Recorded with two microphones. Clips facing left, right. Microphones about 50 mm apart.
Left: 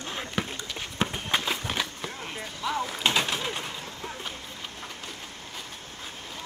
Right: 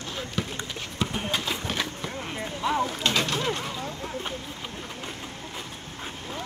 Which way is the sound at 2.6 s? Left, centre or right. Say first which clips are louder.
Right 4 dB; centre.